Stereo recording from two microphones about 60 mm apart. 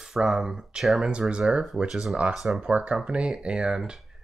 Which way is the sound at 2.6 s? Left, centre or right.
Centre.